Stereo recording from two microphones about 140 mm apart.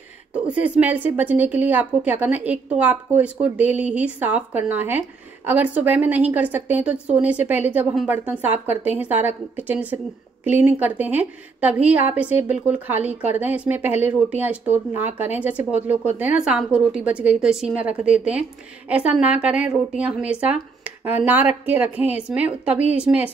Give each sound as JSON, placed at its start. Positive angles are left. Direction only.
{"t": 0.3, "sound": "a woman's voice", "side_deg": -10}